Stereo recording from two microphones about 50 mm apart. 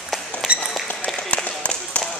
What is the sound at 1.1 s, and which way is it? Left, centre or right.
Applause, centre.